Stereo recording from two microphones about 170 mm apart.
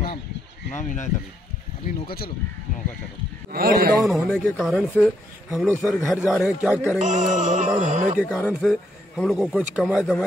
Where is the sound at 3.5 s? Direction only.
65° right (ahead or behind).